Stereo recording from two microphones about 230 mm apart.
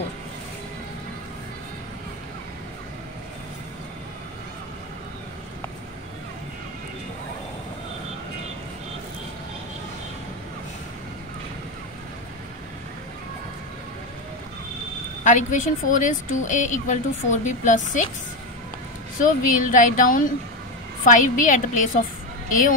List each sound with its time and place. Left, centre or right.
15.2 s speech: left
19.2 s speech: left